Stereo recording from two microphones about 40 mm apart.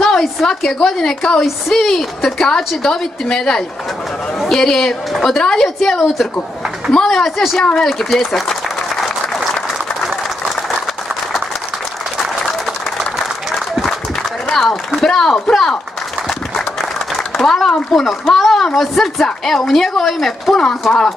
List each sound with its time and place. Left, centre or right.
0.0 s a sound: centre
0.5 s a woman's voice: centre
5.8 s a woman's voice: centre
7.2 s speech: centre
14.5 s a sound: centre
14.9 s a woman's voice: centre
17.4 s a woman's voice: centre